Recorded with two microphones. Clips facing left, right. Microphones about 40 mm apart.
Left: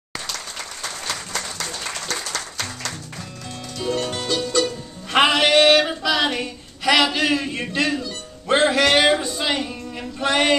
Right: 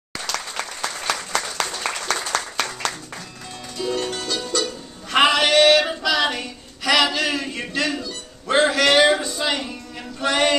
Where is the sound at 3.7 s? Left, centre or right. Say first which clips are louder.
Even; centre.